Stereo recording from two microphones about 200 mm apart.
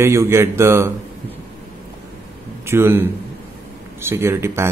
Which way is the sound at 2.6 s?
10° right (ahead or behind).